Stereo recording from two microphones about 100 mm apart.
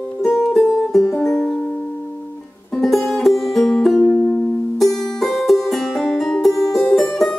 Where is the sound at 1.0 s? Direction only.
25° left (ahead or behind).